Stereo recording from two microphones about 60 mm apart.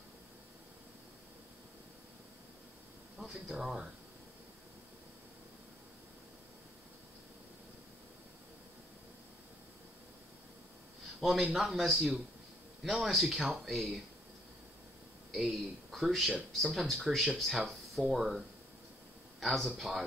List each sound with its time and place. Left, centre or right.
3.2 s speech: centre
11.1 s a man's voice: centre
15.3 s a man's voice: centre
19.4 s speech: centre